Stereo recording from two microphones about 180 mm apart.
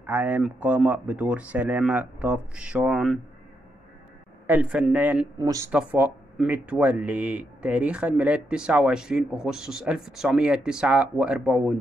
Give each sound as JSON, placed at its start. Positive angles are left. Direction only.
{"t": 0.0, "sound": "speech", "side_deg": -10}
{"t": 4.5, "sound": "speech", "side_deg": -5}